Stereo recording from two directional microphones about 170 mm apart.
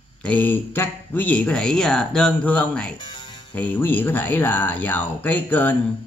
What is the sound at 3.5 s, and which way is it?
Speech, 10° left (ahead or behind).